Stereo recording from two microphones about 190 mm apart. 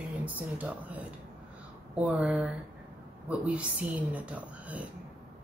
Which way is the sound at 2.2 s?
5° right (ahead or behind).